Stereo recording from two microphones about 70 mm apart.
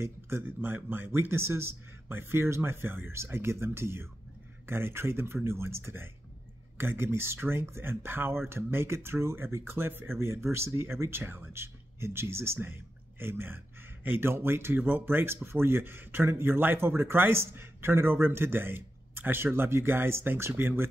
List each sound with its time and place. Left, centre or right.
0.4 s speech: right